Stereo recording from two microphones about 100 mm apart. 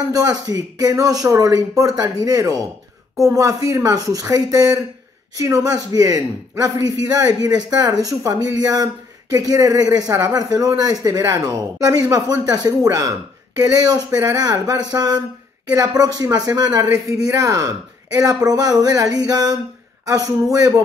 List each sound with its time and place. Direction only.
0.1 s speech: 40° right (ahead or behind)